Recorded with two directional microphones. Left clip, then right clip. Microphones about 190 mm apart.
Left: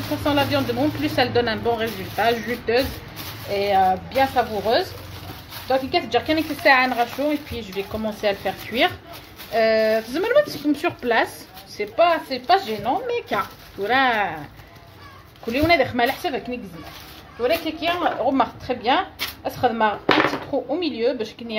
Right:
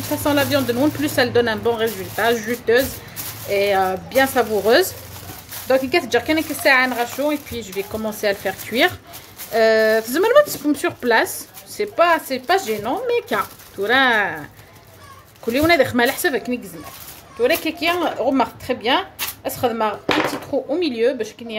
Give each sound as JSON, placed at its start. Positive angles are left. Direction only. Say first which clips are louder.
{"t": 0.2, "sound": "speech", "louder": "right 2 dB", "side_deg": -40}
{"t": 3.5, "sound": "speech", "louder": "right 1 dB", "side_deg": -50}
{"t": 5.7, "sound": "speech", "louder": "right 3 dB", "side_deg": -45}
{"t": 10.8, "sound": "speech", "louder": "right 4 dB", "side_deg": -25}
{"t": 15.5, "sound": "speech", "louder": "right 3 dB", "side_deg": -40}